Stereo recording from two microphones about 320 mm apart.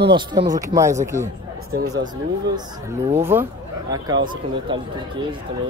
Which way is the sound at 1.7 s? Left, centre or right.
Right.